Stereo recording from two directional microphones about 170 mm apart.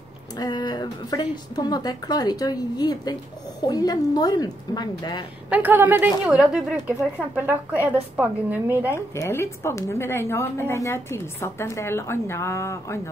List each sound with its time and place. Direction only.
0.4 s speech: 25° left (ahead or behind)
5.5 s speech: 10° right (ahead or behind)
8.9 s a woman's voice: 15° left (ahead or behind)